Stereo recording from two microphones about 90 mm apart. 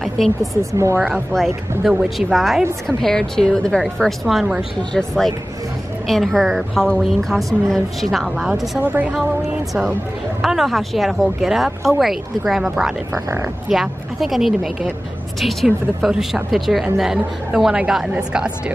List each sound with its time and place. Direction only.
0.0 s a woman's voice: centre (ahead or behind)
0.6 s speech: 35° right (ahead or behind)
1.3 s a woman's voice: centre (ahead or behind)
8.8 s a woman's voice: 20° right (ahead or behind)
10.4 s a woman's voice: centre (ahead or behind)
13.1 s speech: 35° right (ahead or behind)
13.7 s a woman's voice: 5° right (ahead or behind)